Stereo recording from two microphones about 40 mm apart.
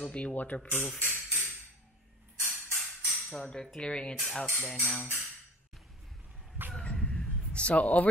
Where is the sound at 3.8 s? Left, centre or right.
Left.